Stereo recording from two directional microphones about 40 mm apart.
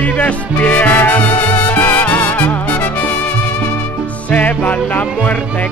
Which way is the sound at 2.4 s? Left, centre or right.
Left.